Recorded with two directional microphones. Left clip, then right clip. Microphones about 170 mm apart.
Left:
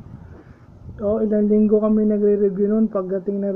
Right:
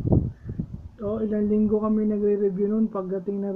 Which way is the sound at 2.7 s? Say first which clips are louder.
Left 6 dB; 15° left (ahead or behind).